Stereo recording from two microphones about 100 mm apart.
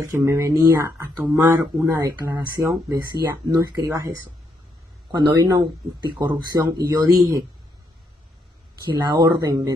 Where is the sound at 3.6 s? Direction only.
40° right (ahead or behind).